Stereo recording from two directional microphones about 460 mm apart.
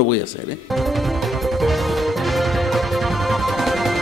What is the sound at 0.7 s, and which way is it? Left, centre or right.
Music, centre.